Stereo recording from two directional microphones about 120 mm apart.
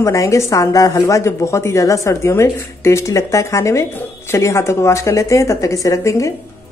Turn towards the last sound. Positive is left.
turn(degrees=25)  # may be behind; listen again after turning